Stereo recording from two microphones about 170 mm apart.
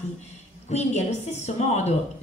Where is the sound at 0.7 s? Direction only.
40° left (ahead or behind).